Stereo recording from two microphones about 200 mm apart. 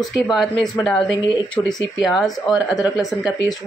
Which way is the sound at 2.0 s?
Centre (ahead or behind).